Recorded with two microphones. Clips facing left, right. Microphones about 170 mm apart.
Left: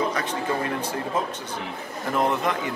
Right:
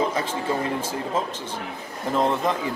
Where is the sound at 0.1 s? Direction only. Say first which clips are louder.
Right 1 dB; 25° right (ahead or behind).